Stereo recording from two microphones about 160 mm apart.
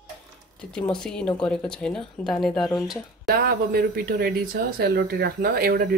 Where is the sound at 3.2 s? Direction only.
70° right (ahead or behind).